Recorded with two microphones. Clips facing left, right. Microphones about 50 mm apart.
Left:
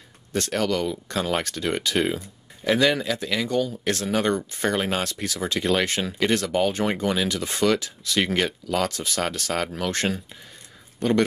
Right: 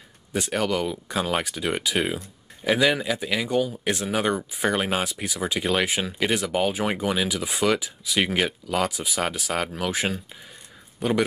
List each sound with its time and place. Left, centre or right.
0.3 s speech: centre